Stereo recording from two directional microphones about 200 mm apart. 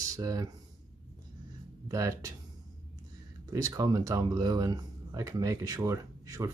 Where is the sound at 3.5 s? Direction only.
15° right (ahead or behind).